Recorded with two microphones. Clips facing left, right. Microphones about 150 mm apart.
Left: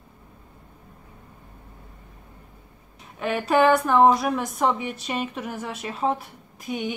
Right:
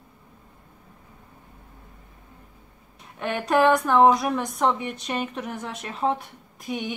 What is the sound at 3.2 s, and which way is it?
A woman's voice, centre (ahead or behind).